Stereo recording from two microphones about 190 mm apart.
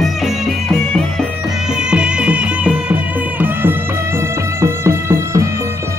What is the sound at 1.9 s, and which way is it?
Music, 5° right (ahead or behind).